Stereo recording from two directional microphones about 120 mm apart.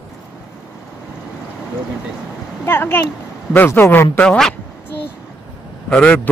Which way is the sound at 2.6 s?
20° left (ahead or behind).